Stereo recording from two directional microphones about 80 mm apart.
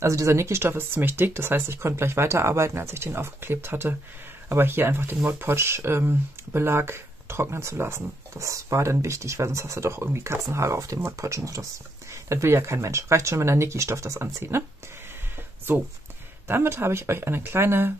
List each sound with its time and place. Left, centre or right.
0.0 s speech: right
8.4 s speech: right
15.7 s speech: right